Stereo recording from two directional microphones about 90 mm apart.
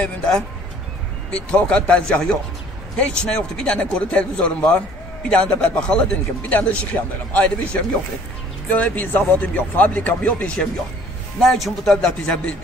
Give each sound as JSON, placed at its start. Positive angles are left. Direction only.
{"t": 1.3, "sound": "a man's voice", "side_deg": 15}
{"t": 11.3, "sound": "speech", "side_deg": 0}